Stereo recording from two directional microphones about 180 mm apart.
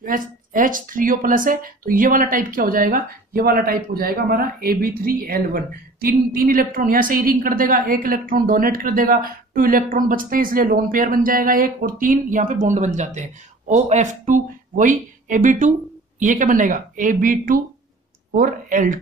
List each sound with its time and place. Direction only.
0.0 s speech: 50° right (ahead or behind)